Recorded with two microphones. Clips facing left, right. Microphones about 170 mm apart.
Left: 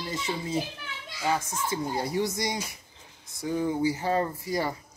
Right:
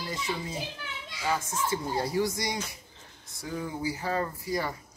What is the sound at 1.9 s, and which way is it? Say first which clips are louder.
Speech: right 1 dB; 20° left (ahead or behind).